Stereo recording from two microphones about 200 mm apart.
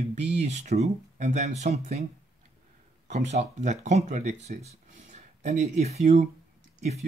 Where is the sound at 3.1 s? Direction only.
35° right (ahead or behind).